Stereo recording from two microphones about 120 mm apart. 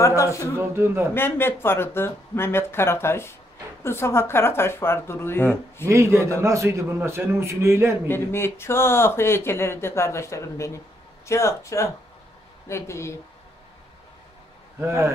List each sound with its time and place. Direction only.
0.0 s speech: 25° left (ahead or behind)
0.6 s a man's voice: 20° right (ahead or behind)
1.1 s speech: 20° left (ahead or behind)
5.9 s a man's voice: 25° right (ahead or behind)
8.1 s speech: 20° left (ahead or behind)
14.8 s a man's voice: 25° right (ahead or behind)